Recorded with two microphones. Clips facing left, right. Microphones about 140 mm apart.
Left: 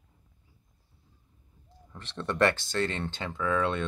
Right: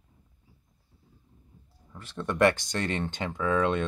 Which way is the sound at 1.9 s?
10° right (ahead or behind).